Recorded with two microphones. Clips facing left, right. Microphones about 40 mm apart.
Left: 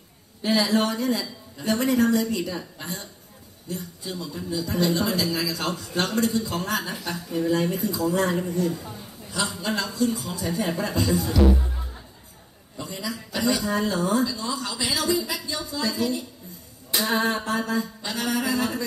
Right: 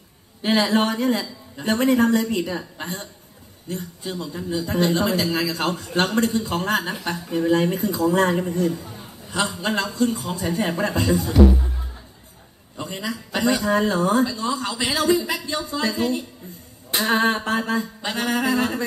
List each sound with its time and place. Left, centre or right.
0.4 s a man's voice: right
12.7 s a man's voice: right
16.9 s a sound: right
17.5 s a man's voice: right